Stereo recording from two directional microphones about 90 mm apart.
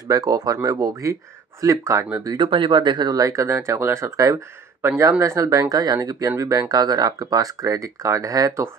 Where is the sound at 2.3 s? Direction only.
65° right (ahead or behind).